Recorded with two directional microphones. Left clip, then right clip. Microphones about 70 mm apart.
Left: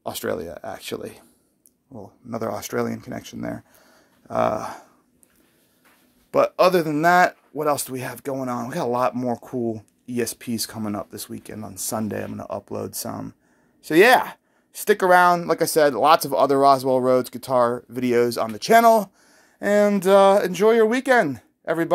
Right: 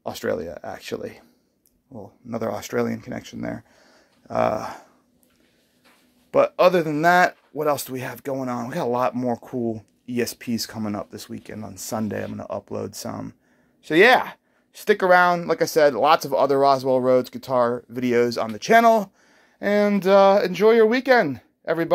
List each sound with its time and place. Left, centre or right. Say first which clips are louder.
0.0 s speech: right 1 dB; centre
3.7 s a sound: even; right
4.3 s speech: even; centre
6.3 s speech: even; centre
10.0 s speech: right 1 dB; centre